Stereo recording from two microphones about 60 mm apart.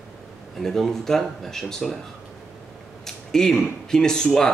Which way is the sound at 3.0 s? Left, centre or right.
Centre.